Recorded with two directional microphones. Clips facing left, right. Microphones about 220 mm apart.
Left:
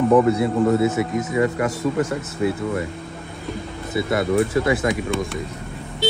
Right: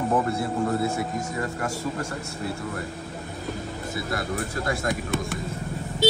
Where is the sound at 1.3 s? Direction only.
90° left.